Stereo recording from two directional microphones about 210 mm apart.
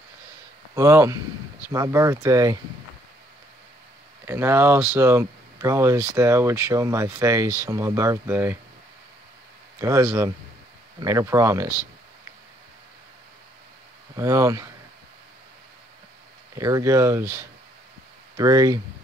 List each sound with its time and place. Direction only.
0.7 s speech: 15° right (ahead or behind)
4.3 s speech: 10° right (ahead or behind)
9.8 s speech: 15° right (ahead or behind)
14.1 s speech: 15° right (ahead or behind)
16.5 s speech: 15° right (ahead or behind)